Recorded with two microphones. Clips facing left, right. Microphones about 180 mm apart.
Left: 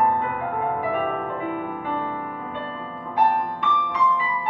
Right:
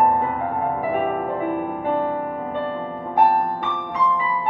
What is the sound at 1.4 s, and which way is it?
Music, 45° right (ahead or behind).